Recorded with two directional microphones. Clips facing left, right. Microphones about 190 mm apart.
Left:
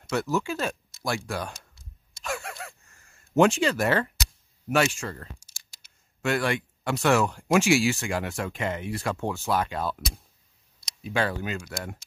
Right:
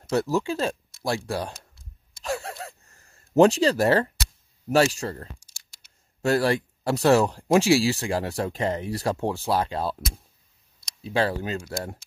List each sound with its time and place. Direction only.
0.1 s speech: 35° right (ahead or behind)
2.2 s gasp: 35° right (ahead or behind)
4.6 s speech: 35° right (ahead or behind)